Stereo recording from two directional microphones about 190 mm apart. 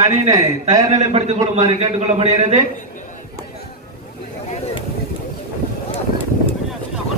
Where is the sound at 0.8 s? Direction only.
35° right (ahead or behind).